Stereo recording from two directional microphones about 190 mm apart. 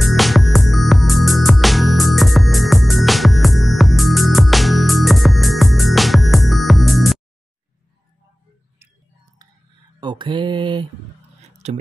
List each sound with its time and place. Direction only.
0.0 s music: centre (ahead or behind)
9.9 s mantra: 25° right (ahead or behind)
11.5 s a sound: 35° right (ahead or behind)